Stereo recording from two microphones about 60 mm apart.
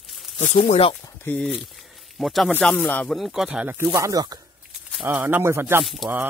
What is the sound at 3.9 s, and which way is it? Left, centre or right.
Speech, right.